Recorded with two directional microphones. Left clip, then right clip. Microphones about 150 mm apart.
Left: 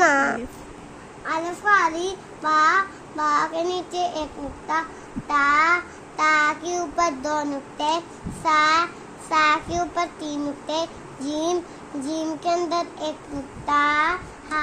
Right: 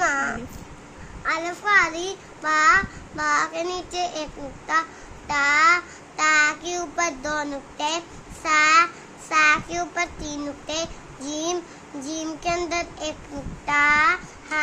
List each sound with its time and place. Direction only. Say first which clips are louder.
0.0 s babbling: left 5 dB; 35° left (ahead or behind)
1.2 s a child's voice: left 1 dB; 15° left (ahead or behind)
5.3 s child singing: even; 20° left (ahead or behind)
8.5 s a child's voice: right 1 dB; 15° left (ahead or behind)
13.7 s child singing: right 2 dB; 20° left (ahead or behind)